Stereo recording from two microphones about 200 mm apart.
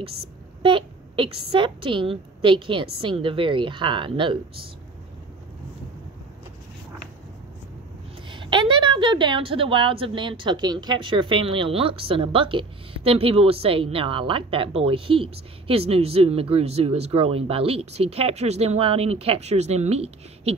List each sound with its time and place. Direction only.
0.6 s a woman's voice: 25° right (ahead or behind)
8.3 s a woman's voice: 25° right (ahead or behind)